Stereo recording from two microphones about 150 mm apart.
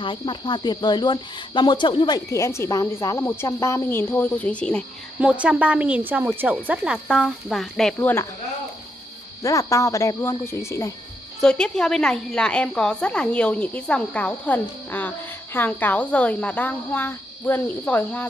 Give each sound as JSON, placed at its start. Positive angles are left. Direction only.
{"t": 0.0, "sound": "speech", "side_deg": 35}
{"t": 5.2, "sound": "a woman's voice", "side_deg": -10}
{"t": 8.0, "sound": "a woman's voice", "side_deg": 15}
{"t": 9.4, "sound": "speech", "side_deg": 20}
{"t": 11.4, "sound": "a woman's voice", "side_deg": 5}